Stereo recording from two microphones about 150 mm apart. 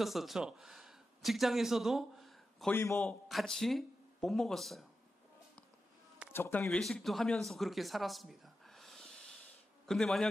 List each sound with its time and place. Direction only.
0.0 s a man's voice: centre (ahead or behind)
2.7 s a man's voice: 15° left (ahead or behind)
3.0 s speech: 5° left (ahead or behind)
6.3 s speech: 15° left (ahead or behind)
6.6 s a man's voice: 5° left (ahead or behind)